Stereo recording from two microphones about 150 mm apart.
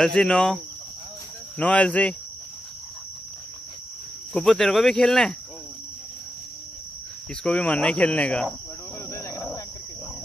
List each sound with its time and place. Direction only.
0.0 s speech: 5° left (ahead or behind)
1.6 s speech: 10° left (ahead or behind)
4.3 s speech: 5° left (ahead or behind)
7.4 s speech: 10° left (ahead or behind)
9.1 s cricket: 20° left (ahead or behind)